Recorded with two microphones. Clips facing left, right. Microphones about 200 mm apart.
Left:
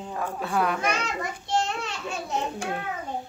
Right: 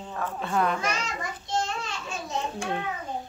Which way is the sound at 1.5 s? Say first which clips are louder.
Left 2 dB; 65° left (ahead or behind).